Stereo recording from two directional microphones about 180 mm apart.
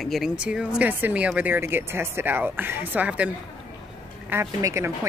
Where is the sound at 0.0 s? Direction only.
Centre (ahead or behind).